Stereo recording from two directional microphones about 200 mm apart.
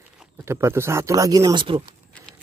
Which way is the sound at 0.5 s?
10° right (ahead or behind).